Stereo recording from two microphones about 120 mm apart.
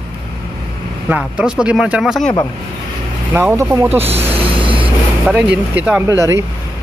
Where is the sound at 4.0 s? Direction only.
55° right (ahead or behind).